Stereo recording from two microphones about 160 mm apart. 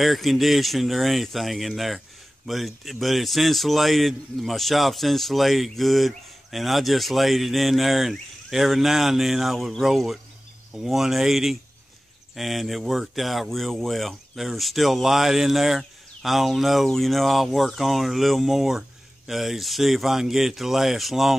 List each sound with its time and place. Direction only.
0.0 s speech: centre (ahead or behind)